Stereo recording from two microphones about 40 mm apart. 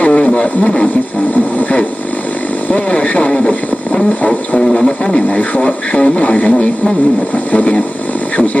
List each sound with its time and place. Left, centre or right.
0.1 s radio: left
1.6 s vehicle: left
3.3 s a sound: left
5.3 s radio: left
7.5 s speech: left